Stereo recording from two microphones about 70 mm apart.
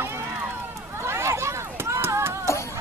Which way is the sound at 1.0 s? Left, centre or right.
Right.